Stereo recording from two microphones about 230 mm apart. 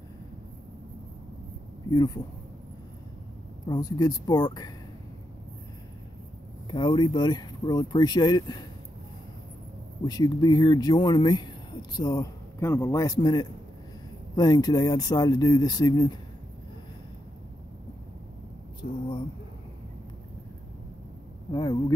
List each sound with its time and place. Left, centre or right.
1.9 s speech: centre
3.6 s speech: centre
6.7 s speech: centre
10.0 s speech: centre
18.8 s speech: left
21.5 s speech: centre